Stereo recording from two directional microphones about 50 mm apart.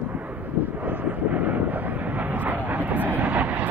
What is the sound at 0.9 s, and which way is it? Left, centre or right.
Vehicle, right.